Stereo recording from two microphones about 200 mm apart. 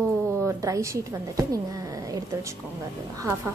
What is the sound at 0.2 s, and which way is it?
A woman's voice, 15° right (ahead or behind).